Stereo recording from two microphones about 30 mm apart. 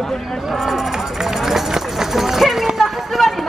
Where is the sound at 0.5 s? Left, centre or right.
Centre.